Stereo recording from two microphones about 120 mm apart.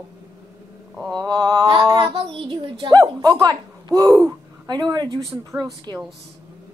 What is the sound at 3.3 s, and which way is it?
Speech, 30° right (ahead or behind).